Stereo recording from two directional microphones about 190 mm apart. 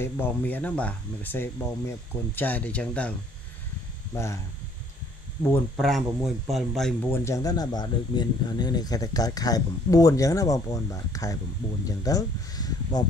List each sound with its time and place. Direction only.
0.0 s speech: 10° left (ahead or behind)
5.8 s speech: centre (ahead or behind)
7.1 s speech: 15° left (ahead or behind)